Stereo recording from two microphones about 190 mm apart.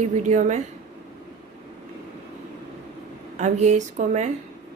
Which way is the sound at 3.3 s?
35° right (ahead or behind).